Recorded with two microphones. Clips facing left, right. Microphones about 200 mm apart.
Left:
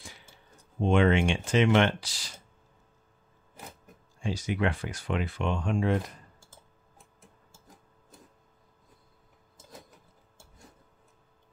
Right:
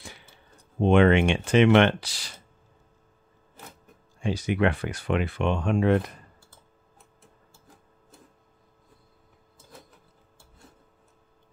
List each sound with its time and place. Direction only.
0.7 s speech: 65° right (ahead or behind)
4.2 s speech: 60° right (ahead or behind)